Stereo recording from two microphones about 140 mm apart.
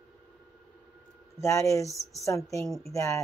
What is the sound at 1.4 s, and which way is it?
Speech, 20° left (ahead or behind).